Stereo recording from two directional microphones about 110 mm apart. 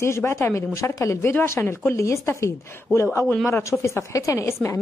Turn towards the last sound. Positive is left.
turn(degrees=25)  # may be behind; listen again after turning